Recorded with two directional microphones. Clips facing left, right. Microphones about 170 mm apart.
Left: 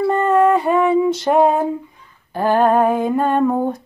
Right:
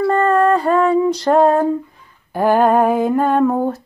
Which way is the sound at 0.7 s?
Centre (ahead or behind).